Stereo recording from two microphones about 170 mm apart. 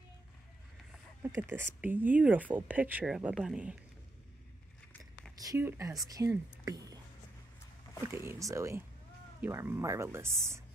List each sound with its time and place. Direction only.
1.2 s speech: 15° right (ahead or behind)
5.4 s speech: 15° right (ahead or behind)
8.3 s speech: 15° right (ahead or behind)